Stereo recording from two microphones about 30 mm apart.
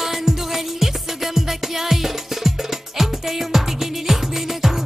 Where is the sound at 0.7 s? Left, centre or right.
Centre.